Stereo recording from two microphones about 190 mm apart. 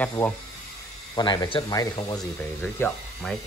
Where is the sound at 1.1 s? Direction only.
20° left (ahead or behind).